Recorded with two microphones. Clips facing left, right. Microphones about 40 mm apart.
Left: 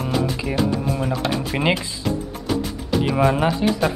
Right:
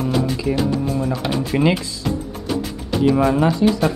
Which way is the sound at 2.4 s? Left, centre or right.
Centre.